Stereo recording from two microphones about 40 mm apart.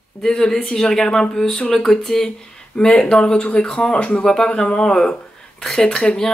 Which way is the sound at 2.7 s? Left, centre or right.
Left.